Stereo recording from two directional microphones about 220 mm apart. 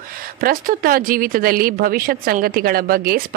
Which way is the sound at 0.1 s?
40° right (ahead or behind).